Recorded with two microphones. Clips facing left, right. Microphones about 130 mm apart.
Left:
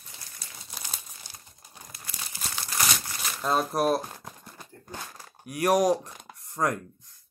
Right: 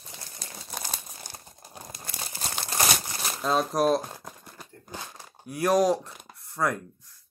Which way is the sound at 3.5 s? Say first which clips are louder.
Right 1 dB; 5° left (ahead or behind).